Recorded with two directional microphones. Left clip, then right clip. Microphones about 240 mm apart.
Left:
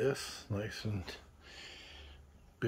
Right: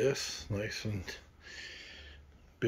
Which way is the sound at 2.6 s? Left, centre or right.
Centre.